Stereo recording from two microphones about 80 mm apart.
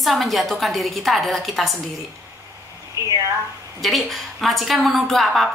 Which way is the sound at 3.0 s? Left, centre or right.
Right.